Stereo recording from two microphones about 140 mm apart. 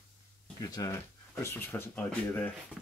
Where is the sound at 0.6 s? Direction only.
25° left (ahead or behind).